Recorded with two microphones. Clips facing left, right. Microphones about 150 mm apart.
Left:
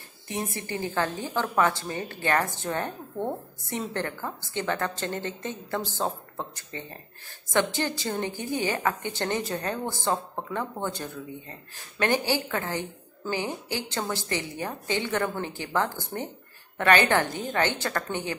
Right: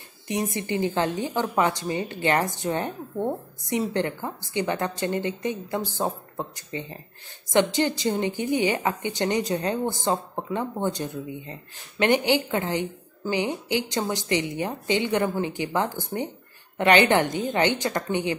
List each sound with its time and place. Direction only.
0.3 s a woman's voice: 20° right (ahead or behind)